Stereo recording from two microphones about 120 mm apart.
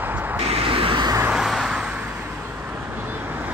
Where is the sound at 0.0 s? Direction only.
15° right (ahead or behind).